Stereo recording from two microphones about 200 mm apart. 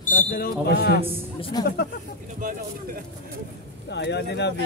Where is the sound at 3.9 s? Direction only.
60° left (ahead or behind).